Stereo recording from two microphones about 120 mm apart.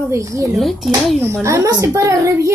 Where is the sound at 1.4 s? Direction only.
25° right (ahead or behind).